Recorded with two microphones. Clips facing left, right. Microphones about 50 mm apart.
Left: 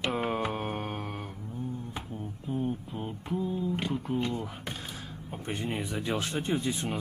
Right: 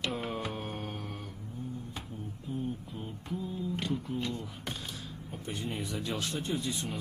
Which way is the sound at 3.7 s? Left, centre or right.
Left.